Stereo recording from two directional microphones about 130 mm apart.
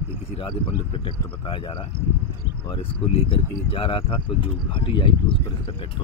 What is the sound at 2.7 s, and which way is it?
Speech, 45° left (ahead or behind).